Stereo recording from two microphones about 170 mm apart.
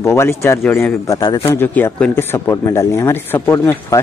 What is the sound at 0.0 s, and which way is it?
Speech, 15° left (ahead or behind).